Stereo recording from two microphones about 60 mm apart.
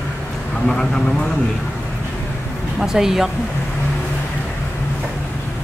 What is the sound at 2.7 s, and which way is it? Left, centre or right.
Speech, centre.